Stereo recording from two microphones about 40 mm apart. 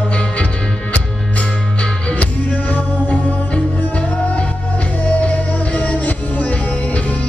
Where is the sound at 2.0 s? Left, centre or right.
Left.